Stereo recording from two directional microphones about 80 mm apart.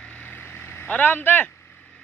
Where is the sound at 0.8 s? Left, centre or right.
Centre.